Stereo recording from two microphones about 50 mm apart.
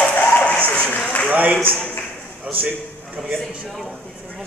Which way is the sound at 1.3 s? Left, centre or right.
Right.